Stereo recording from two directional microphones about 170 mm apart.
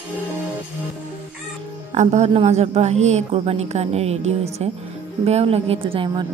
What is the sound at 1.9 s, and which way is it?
A woman's voice, 45° right (ahead or behind).